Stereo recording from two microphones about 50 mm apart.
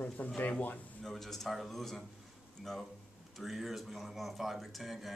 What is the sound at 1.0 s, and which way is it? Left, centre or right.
A man's voice, centre.